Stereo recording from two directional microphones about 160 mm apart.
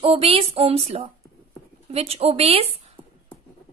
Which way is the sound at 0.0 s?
35° right (ahead or behind).